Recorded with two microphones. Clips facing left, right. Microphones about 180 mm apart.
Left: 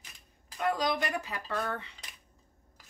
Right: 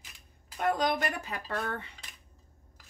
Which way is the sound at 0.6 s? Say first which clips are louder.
Right 1 dB; 55° right (ahead or behind).